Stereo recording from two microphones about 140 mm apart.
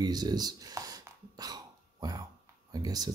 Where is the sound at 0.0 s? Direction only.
30° right (ahead or behind).